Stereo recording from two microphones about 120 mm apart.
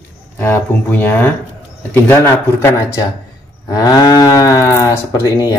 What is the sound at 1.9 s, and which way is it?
Moo, 15° left (ahead or behind).